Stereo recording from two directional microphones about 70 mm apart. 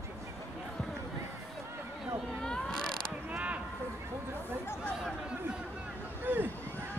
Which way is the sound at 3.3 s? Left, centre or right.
Right.